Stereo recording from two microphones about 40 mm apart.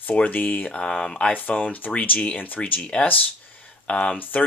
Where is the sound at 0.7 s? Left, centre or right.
Left.